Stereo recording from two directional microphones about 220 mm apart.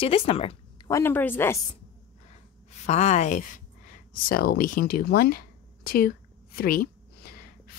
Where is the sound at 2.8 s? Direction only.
30° left (ahead or behind).